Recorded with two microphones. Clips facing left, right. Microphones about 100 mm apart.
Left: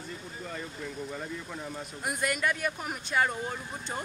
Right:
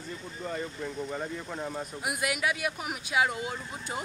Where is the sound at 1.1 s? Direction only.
45° right (ahead or behind).